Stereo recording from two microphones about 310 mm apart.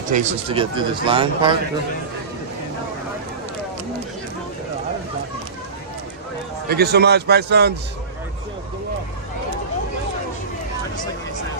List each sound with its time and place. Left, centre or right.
0.1 s speech: right
6.7 s speech: right